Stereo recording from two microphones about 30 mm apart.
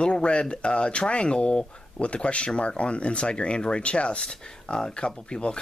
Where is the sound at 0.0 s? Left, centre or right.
Left.